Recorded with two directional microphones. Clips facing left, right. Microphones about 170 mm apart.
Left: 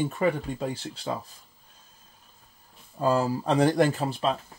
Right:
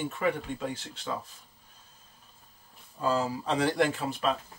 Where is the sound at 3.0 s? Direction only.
50° left (ahead or behind).